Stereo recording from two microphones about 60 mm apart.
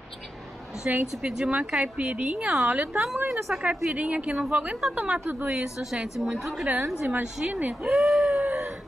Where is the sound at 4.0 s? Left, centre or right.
Centre.